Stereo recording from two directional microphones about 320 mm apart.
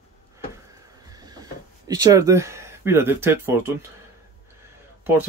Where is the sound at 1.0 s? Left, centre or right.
Centre.